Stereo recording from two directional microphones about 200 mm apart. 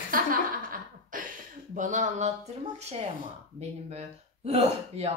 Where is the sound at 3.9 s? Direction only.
30° right (ahead or behind).